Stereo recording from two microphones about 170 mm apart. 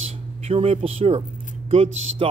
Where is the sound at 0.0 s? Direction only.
35° right (ahead or behind).